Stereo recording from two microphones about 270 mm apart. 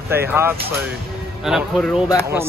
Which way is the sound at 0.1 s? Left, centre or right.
Centre.